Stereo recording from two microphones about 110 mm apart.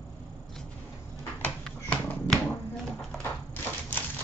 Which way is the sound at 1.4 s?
10° left (ahead or behind).